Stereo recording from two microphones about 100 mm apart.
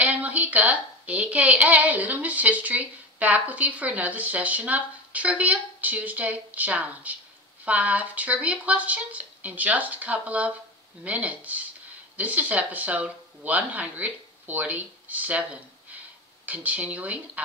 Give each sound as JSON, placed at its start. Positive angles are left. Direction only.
{"t": 0.0, "sound": "a woman's voice", "side_deg": -15}